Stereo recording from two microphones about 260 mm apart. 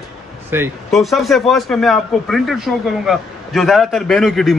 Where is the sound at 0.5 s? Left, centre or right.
Centre.